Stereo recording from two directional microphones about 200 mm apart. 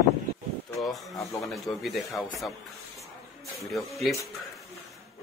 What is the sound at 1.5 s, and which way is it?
Speech, centre (ahead or behind).